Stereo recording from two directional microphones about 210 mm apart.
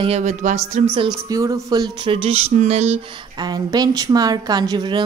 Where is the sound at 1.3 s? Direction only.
15° right (ahead or behind).